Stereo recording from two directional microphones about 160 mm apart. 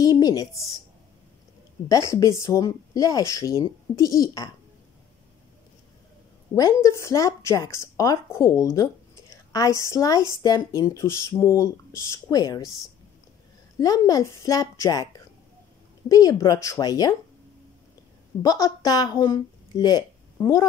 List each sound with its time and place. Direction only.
0.0 s speech: 25° left (ahead or behind)
1.9 s speech: 20° left (ahead or behind)
6.5 s a woman's voice: 20° left (ahead or behind)
13.7 s speech: 20° left (ahead or behind)
18.4 s speech: 20° left (ahead or behind)